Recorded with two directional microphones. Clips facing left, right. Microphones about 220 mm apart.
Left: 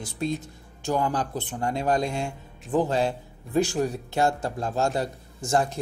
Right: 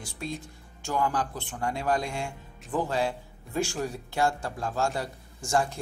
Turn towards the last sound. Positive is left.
turn(degrees=20)  # may be behind; listen again after turning